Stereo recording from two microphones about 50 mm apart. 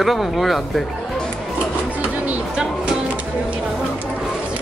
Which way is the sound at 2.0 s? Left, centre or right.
Right.